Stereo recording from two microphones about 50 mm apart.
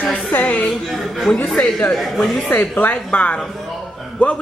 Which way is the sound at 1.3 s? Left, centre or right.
Left.